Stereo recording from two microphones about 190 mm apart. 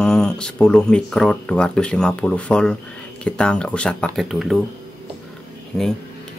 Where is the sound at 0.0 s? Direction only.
5° left (ahead or behind).